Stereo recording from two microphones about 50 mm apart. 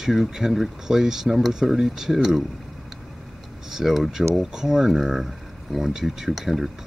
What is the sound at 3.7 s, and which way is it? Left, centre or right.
Speech, centre.